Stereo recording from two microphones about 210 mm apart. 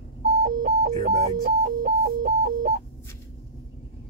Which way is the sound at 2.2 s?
50° right (ahead or behind).